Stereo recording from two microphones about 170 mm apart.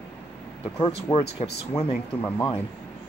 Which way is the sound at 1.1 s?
35° left (ahead or behind).